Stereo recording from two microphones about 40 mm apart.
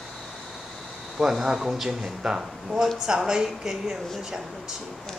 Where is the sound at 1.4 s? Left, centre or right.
Centre.